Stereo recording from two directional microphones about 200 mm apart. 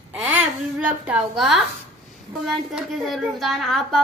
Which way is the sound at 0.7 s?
5° right (ahead or behind).